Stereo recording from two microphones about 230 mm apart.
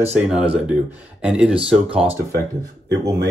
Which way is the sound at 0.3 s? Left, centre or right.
Centre.